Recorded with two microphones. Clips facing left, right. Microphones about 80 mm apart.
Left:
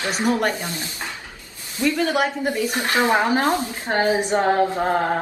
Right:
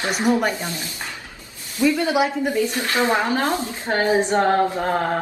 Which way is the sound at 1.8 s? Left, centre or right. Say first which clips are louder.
Right 2 dB; centre.